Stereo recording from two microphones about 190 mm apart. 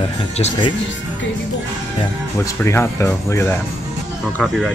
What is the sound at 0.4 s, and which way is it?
Speech, 25° left (ahead or behind).